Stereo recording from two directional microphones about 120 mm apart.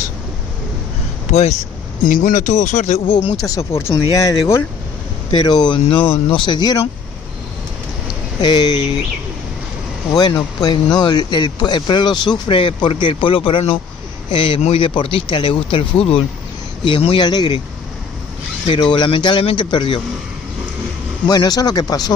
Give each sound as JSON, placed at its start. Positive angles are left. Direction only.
{"t": 1.3, "sound": "speech", "side_deg": 70}
{"t": 2.0, "sound": "speech", "side_deg": 90}
{"t": 3.4, "sound": "speech", "side_deg": 25}
{"t": 5.3, "sound": "speech", "side_deg": 40}
{"t": 8.4, "sound": "speech", "side_deg": 40}
{"t": 10.1, "sound": "speech", "side_deg": 35}
{"t": 17.3, "sound": "speech", "side_deg": 35}
{"t": 18.7, "sound": "speech", "side_deg": 45}
{"t": 21.3, "sound": "speech", "side_deg": 35}